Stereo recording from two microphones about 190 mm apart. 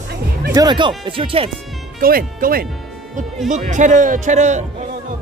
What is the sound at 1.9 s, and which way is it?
A man's voice, 50° right (ahead or behind).